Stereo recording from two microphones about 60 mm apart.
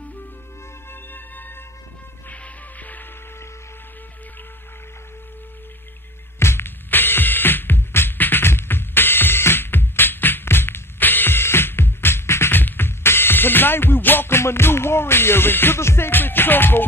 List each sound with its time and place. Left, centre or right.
1.1 s music: left
6.4 s music: left